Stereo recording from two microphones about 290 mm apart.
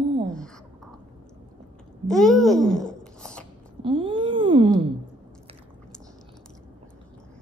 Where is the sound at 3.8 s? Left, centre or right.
Centre.